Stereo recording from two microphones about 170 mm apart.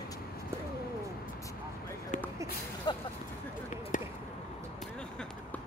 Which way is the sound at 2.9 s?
25° left (ahead or behind).